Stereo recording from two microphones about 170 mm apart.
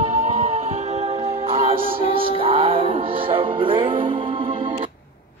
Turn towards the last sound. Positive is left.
turn(degrees=-30)  # may be behind; listen again after turning